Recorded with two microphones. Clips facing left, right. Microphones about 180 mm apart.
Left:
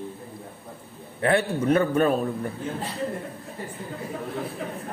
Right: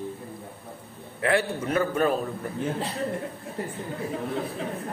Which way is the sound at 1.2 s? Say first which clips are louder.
Left 3 dB; 30° left (ahead or behind).